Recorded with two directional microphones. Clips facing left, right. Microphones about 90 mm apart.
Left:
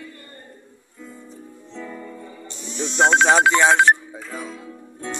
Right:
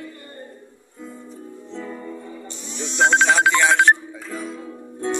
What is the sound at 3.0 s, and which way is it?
Speech, 40° left (ahead or behind).